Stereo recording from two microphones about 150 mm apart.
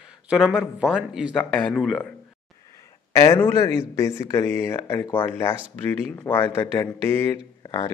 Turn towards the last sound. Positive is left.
turn(degrees=20)  # may be behind; listen again after turning